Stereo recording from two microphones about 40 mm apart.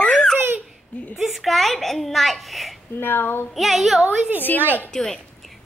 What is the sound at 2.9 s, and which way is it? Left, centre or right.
Speech, left.